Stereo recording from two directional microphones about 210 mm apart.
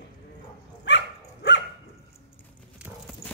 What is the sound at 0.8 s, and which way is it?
Dog, 55° left (ahead or behind).